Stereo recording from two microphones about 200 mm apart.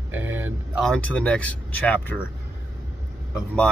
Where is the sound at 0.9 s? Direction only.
5° left (ahead or behind).